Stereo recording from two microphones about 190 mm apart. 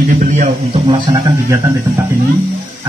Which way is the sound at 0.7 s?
25° right (ahead or behind).